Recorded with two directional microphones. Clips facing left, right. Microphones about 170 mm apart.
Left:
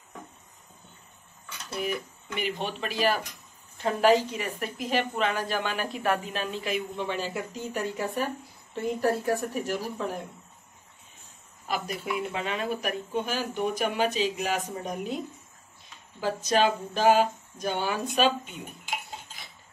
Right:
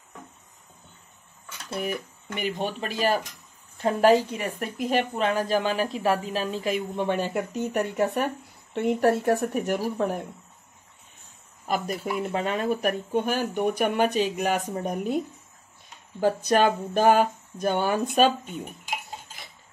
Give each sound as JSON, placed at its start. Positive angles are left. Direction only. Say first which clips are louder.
{"t": 2.2, "sound": "a woman's voice", "louder": "right 3 dB", "side_deg": -45}
{"t": 11.6, "sound": "a woman's voice", "louder": "right 4 dB", "side_deg": -45}